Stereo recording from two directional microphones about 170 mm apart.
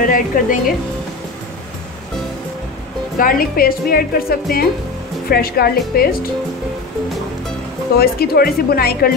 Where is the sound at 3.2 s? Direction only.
55° left (ahead or behind).